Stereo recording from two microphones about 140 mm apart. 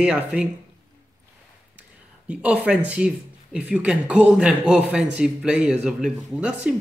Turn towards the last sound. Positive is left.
turn(degrees=-5)  # may be behind; listen again after turning